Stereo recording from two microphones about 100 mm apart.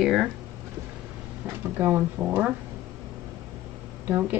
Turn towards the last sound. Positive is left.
turn(degrees=-20)  # may be behind; listen again after turning